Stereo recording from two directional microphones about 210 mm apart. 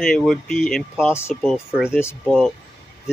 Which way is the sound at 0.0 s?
Centre (ahead or behind).